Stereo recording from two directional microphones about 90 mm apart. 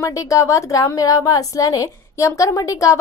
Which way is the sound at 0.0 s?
40° left (ahead or behind).